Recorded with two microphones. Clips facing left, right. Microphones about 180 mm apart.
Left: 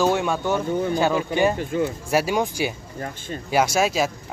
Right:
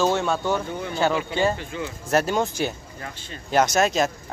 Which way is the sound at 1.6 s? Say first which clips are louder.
Left 8 dB; 50° left (ahead or behind).